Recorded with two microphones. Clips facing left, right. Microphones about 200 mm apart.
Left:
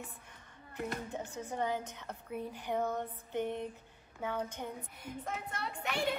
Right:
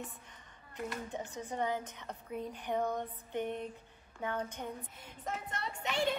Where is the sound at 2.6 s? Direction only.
10° left (ahead or behind).